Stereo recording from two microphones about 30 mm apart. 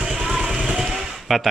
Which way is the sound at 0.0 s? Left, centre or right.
Centre.